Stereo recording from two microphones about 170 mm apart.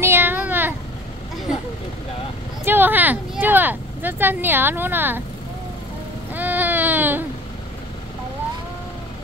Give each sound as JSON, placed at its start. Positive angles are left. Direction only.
{"t": 0.0, "sound": "a sound", "side_deg": -15}
{"t": 2.6, "sound": "speech", "side_deg": -10}
{"t": 6.3, "sound": "baby cry", "side_deg": -10}